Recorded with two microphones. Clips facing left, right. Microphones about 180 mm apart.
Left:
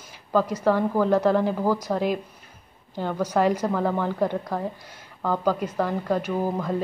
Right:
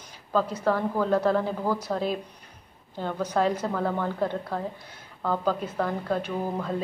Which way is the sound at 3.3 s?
10° left (ahead or behind).